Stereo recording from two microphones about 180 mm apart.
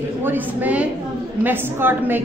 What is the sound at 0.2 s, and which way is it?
A woman's voice, 10° right (ahead or behind).